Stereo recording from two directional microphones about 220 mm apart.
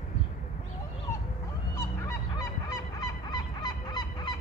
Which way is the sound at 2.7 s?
20° left (ahead or behind).